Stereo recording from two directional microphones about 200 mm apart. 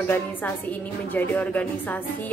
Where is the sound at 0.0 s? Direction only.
10° left (ahead or behind).